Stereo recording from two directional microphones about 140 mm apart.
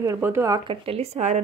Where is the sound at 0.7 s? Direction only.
45° right (ahead or behind).